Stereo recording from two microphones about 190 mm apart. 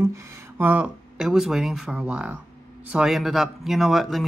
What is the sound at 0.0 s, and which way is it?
Speech, 15° right (ahead or behind).